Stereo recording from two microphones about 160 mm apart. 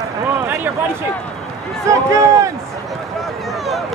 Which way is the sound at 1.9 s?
20° right (ahead or behind).